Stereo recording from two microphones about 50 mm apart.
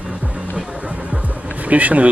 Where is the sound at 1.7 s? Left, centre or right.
Right.